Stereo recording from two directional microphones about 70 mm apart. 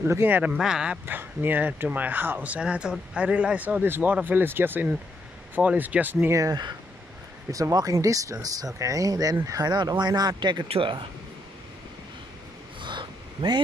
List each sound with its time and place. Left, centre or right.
0.1 s speech: right
0.6 s speech: centre
1.0 s speech: right
6.1 s speech: right
7.7 s speech: right
9.7 s speech: right
12.9 s a sound: right